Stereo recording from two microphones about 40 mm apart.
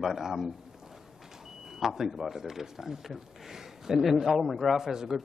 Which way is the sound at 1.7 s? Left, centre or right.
Centre.